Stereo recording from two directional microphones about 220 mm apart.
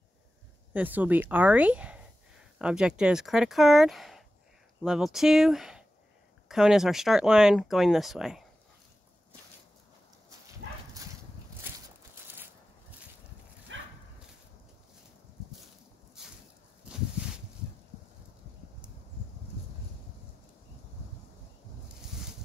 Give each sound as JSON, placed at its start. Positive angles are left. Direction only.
{"t": 0.7, "sound": "speech", "side_deg": -5}
{"t": 13.7, "sound": "dog", "side_deg": -60}